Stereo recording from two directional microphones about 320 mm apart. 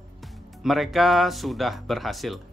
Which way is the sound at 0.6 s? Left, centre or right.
Centre.